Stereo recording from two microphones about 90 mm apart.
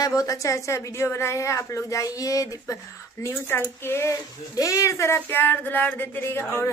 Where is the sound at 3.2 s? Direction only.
25° left (ahead or behind).